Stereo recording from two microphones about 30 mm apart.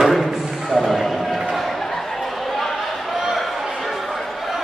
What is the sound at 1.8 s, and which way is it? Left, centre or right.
Chatter, centre.